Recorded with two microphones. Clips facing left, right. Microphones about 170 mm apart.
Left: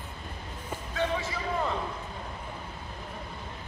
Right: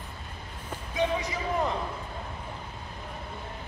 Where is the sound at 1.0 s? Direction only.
15° right (ahead or behind).